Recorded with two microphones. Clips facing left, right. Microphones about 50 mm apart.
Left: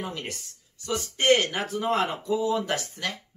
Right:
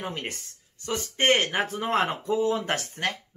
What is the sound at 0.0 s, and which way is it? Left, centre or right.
Speech, right.